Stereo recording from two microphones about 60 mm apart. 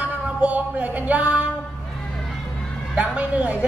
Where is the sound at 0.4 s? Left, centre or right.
Right.